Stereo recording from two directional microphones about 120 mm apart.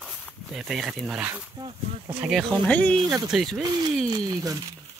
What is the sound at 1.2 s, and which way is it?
Speech, 10° right (ahead or behind).